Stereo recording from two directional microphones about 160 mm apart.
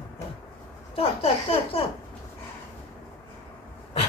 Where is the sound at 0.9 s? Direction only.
35° left (ahead or behind).